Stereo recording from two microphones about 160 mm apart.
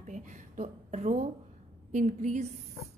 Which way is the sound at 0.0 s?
50° right (ahead or behind).